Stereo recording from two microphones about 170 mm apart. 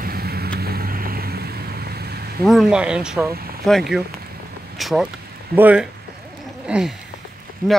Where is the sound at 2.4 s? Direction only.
Centre (ahead or behind).